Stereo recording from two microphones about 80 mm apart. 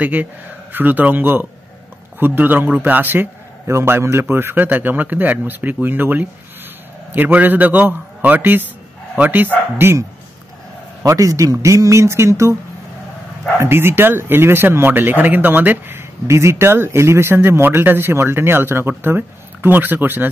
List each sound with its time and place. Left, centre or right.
0.0 s speech: right
9.8 s speech: right
11.1 s speech: right
13.6 s speech: right